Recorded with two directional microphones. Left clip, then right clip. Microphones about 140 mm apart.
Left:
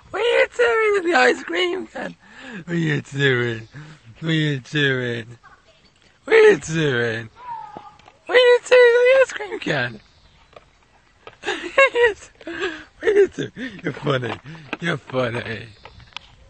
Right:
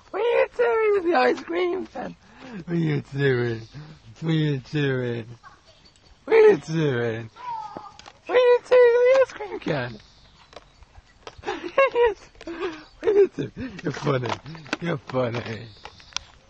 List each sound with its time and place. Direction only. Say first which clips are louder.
0.1 s speech: left 3 dB; 15° left (ahead or behind)
8.3 s a sound: left 4 dB; 20° left (ahead or behind)
11.4 s speech: left 5 dB; 15° left (ahead or behind)
14.8 s speech: left 4 dB; 10° left (ahead or behind)